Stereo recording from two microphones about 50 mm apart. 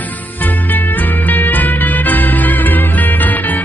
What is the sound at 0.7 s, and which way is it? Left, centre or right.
Music, left.